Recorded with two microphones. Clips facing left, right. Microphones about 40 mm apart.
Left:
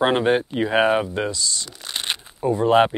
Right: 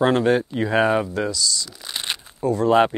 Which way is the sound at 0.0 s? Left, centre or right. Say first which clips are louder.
Right 1 dB; left.